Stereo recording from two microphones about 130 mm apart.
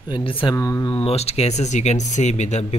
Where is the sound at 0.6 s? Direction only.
25° left (ahead or behind).